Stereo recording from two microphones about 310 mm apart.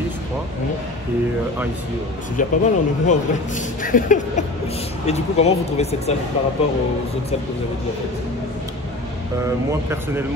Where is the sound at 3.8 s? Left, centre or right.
Left.